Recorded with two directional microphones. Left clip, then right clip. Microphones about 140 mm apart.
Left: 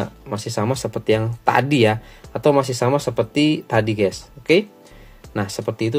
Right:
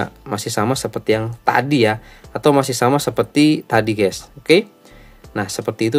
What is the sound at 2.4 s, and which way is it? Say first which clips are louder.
Speech: right 2 dB; 30° right (ahead or behind).